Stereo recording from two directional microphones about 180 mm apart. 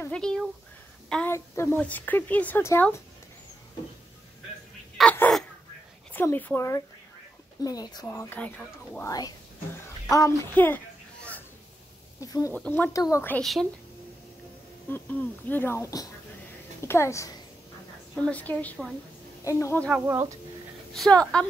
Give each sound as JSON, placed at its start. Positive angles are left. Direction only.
{"t": 0.0, "sound": "speech", "side_deg": 5}
{"t": 1.0, "sound": "a sound", "side_deg": 5}
{"t": 1.3, "sound": "speech", "side_deg": 15}
{"t": 5.0, "sound": "caw", "side_deg": 0}
{"t": 6.1, "sound": "speech", "side_deg": 10}
{"t": 8.1, "sound": "speech", "side_deg": 10}
{"t": 10.0, "sound": "a sound", "side_deg": 15}
{"t": 12.2, "sound": "speech", "side_deg": 20}
{"t": 12.5, "sound": "speech", "side_deg": 10}
{"t": 14.9, "sound": "speech", "side_deg": 10}
{"t": 19.9, "sound": "speech", "side_deg": -15}
{"t": 20.9, "sound": "speech", "side_deg": 5}